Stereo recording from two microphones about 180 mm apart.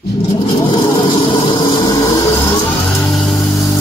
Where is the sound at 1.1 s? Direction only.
30° left (ahead or behind).